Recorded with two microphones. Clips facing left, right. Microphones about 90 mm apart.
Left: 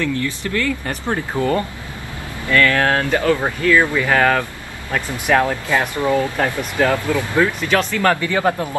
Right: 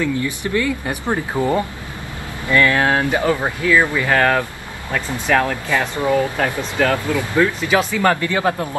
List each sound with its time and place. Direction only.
0.0 s speech: 15° right (ahead or behind); by 4.4 s centre (ahead or behind)
4.9 s speech: 10° left (ahead or behind)
6.4 s speech: centre (ahead or behind)
6.8 s speech: 15° left (ahead or behind)
7.6 s speech: 10° right (ahead or behind)